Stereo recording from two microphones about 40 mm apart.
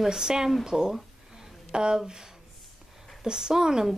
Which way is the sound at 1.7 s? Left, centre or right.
Centre.